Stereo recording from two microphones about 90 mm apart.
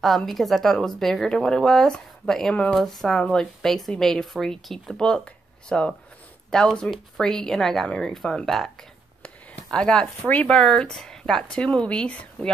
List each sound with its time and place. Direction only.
0.0 s speech: centre (ahead or behind)